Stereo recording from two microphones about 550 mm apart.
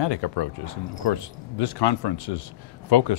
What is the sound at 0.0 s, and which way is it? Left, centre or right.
Speech, left.